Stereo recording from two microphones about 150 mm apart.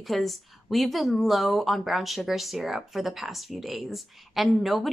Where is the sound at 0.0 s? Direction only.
Centre (ahead or behind).